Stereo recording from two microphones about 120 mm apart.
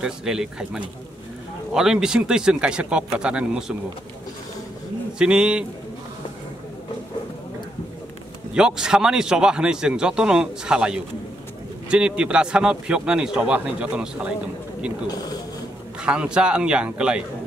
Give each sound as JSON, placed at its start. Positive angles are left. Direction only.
{"t": 0.0, "sound": "a man's voice", "side_deg": -5}
{"t": 5.2, "sound": "a man's voice", "side_deg": -10}
{"t": 8.5, "sound": "a man's voice", "side_deg": -5}
{"t": 15.0, "sound": "speech", "side_deg": 35}
{"t": 16.0, "sound": "a man's voice", "side_deg": -10}